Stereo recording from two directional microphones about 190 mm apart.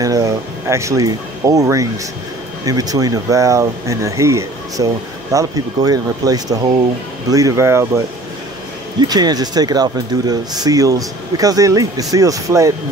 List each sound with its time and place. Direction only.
0.0 s speech: 15° right (ahead or behind)
9.0 s speech: 20° right (ahead or behind)